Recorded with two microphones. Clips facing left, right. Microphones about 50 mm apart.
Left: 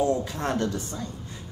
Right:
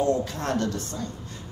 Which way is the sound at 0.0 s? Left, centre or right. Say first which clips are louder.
Even; centre.